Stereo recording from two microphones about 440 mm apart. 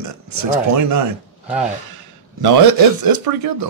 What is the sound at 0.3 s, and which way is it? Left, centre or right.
Speech, right.